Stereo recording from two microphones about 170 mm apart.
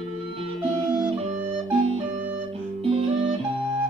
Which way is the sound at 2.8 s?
35° right (ahead or behind).